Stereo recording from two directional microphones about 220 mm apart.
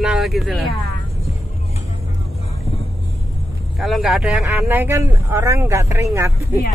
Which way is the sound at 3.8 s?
Centre (ahead or behind).